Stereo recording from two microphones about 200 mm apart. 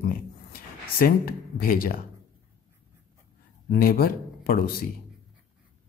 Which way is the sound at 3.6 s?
50° left (ahead or behind).